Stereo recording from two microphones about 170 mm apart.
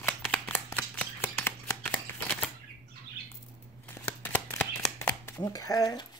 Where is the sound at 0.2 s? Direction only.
10° left (ahead or behind).